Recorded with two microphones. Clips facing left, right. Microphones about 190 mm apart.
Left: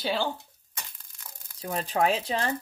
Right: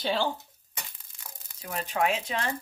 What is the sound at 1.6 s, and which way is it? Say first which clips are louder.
Speech: left 2 dB; 35° left (ahead or behind).